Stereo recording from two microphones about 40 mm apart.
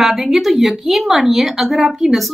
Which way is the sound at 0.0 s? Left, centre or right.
Centre.